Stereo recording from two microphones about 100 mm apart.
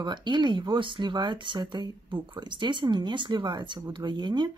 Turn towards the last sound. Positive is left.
turn(degrees=-50)  # may be behind; listen again after turning